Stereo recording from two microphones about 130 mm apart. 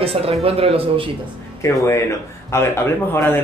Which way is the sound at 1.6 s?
20° left (ahead or behind).